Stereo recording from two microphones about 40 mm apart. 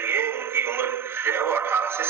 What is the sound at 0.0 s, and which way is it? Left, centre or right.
Synthetic singing, right.